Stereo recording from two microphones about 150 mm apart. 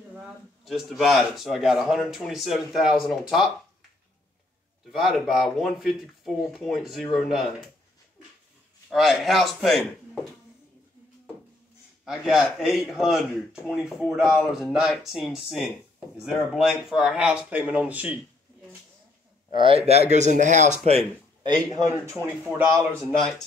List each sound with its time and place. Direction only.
0.1 s speech: 5° right (ahead or behind)
4.9 s speech: centre (ahead or behind)
8.9 s speech: centre (ahead or behind)
12.0 s speech: 5° right (ahead or behind)
19.5 s speech: 35° right (ahead or behind)
19.9 s speech: 50° right (ahead or behind)
21.4 s a man's voice: 30° right (ahead or behind)